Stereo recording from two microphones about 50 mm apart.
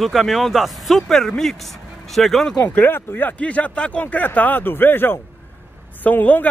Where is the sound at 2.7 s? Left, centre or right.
Left.